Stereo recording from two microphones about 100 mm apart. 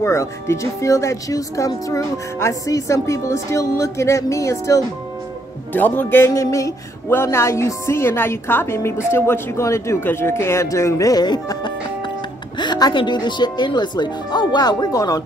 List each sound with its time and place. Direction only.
0.0 s speech: 30° left (ahead or behind)
5.7 s speech: 20° left (ahead or behind); by 15.2 s 35° left (ahead or behind)